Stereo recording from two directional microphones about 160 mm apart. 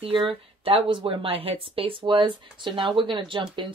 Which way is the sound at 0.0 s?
35° right (ahead or behind).